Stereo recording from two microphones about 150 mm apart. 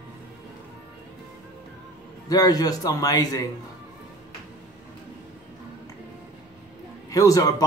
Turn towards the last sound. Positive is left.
turn(degrees=25)  # may be behind; listen again after turning